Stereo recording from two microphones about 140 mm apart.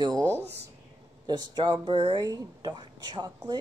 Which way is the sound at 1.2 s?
30° right (ahead or behind).